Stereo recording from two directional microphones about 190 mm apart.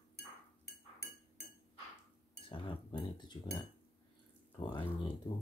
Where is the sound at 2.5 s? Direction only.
25° left (ahead or behind).